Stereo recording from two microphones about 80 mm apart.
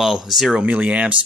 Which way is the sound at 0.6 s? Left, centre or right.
Centre.